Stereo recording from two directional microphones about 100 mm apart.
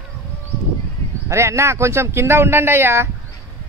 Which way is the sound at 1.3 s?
30° right (ahead or behind).